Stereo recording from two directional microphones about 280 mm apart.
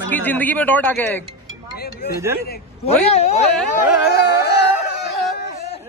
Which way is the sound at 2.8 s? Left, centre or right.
Left.